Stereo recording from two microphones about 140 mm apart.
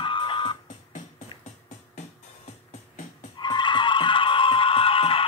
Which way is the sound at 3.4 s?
30° left (ahead or behind).